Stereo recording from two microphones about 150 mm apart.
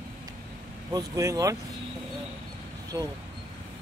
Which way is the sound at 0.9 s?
20° right (ahead or behind).